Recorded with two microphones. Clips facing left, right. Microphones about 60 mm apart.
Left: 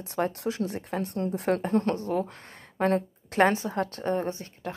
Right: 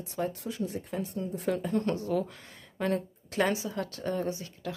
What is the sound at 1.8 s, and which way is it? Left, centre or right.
A woman's voice, left.